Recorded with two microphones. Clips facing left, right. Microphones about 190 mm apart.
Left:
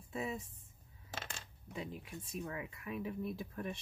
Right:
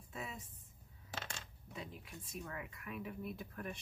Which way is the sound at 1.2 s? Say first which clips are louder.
Even; 25° left (ahead or behind).